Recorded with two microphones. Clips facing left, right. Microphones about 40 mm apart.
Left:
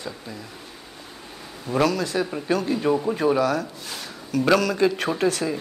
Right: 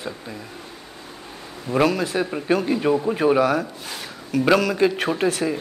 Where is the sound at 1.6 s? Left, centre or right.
Centre.